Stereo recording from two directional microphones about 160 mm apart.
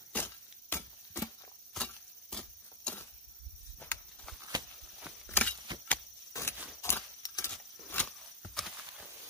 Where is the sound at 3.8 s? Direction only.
10° left (ahead or behind).